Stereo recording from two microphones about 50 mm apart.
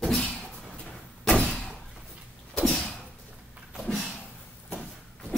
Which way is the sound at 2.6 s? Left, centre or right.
Centre.